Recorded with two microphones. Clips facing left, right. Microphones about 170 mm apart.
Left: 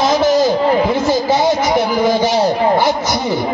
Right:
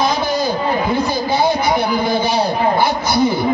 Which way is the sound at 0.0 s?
90° left.